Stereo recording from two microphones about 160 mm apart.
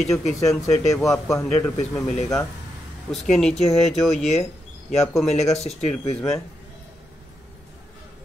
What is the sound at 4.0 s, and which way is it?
Speech, centre (ahead or behind).